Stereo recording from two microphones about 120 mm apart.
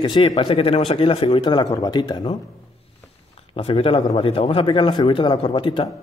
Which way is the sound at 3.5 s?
50° left (ahead or behind).